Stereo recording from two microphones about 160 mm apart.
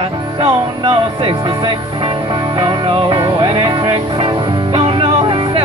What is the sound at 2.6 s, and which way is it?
Music, 35° right (ahead or behind).